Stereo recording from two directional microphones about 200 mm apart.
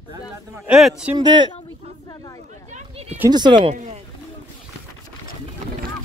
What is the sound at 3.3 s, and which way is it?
Speech, 20° right (ahead or behind).